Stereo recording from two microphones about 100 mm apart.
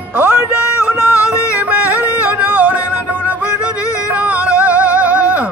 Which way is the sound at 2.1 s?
15° right (ahead or behind).